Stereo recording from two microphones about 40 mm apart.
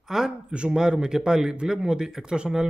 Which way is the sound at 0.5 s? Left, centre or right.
Right.